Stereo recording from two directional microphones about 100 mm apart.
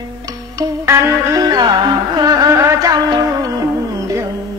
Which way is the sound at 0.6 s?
30° right (ahead or behind).